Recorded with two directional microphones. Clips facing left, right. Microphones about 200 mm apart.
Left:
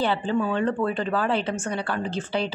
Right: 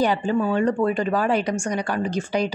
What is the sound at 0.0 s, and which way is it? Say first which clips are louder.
A woman's voice: right 3 dB; 15° right (ahead or behind).